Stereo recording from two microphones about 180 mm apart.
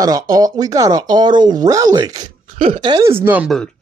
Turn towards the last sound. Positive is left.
turn(degrees=-10)  # may be behind; listen again after turning